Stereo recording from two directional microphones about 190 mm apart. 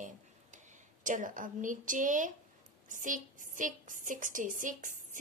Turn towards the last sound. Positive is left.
turn(degrees=-45)  # may be behind; listen again after turning